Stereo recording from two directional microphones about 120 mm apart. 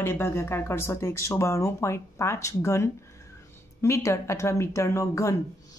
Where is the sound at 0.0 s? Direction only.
20° left (ahead or behind).